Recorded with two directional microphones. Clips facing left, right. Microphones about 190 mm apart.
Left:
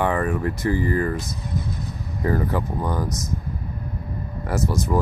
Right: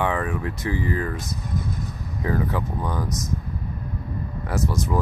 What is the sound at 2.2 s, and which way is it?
Speech, 5° left (ahead or behind).